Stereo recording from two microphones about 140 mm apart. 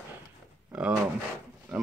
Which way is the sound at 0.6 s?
5° right (ahead or behind).